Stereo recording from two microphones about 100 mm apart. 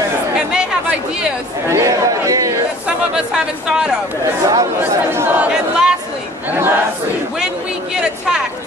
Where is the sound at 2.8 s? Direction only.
10° right (ahead or behind).